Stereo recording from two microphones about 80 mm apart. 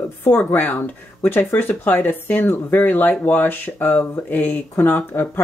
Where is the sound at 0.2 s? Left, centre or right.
Left.